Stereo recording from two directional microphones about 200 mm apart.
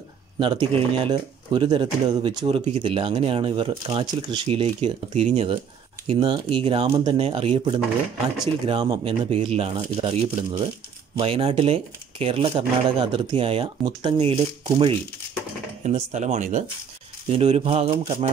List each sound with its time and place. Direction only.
0.4 s speech: 25° right (ahead or behind)